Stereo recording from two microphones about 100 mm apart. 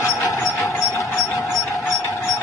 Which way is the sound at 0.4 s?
Centre (ahead or behind).